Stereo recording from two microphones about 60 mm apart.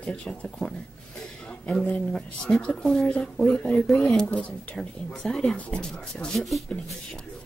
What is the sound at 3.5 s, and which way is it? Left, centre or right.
Speech, centre.